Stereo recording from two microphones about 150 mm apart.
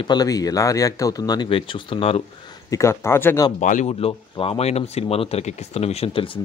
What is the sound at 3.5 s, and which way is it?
Speech, 55° left (ahead or behind).